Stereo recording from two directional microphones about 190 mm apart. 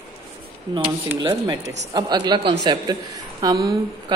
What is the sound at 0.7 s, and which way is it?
A woman's voice, 25° right (ahead or behind).